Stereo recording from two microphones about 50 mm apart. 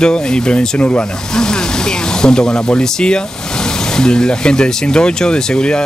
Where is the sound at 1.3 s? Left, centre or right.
Centre.